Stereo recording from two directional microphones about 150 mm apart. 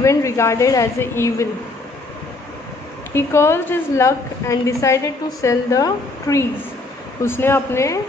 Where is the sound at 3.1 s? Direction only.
15° left (ahead or behind).